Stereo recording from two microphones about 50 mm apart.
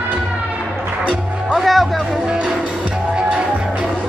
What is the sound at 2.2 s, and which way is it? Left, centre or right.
Music, centre.